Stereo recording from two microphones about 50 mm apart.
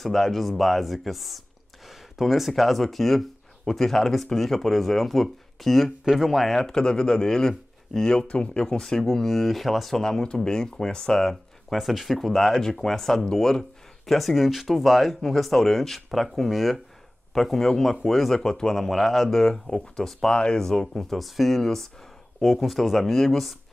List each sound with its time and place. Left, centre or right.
0.0 s speech: centre
11.7 s speech: centre
20.3 s speech: centre
20.6 s speech: centre